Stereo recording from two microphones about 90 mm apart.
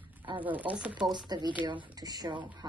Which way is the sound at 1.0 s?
55° right (ahead or behind).